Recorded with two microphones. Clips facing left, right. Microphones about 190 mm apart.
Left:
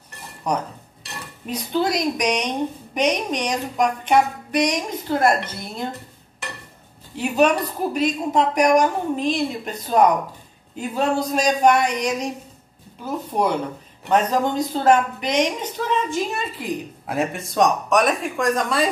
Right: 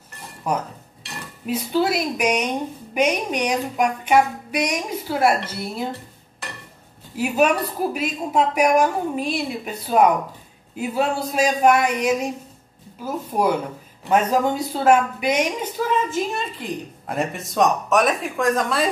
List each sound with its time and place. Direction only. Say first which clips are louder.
0.5 s a woman's voice: even; 5° right (ahead or behind)
7.2 s a woman's voice: left 1 dB; 5° right (ahead or behind)